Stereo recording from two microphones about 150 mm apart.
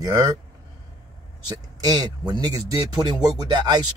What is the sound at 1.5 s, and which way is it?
Speech, 25° right (ahead or behind).